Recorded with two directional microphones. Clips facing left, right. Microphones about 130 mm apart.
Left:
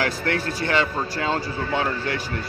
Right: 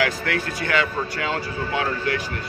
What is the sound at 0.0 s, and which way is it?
Speech, 30° left (ahead or behind).